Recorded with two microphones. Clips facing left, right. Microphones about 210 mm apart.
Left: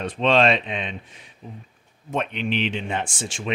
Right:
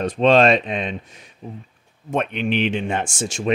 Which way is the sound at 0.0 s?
40° right (ahead or behind).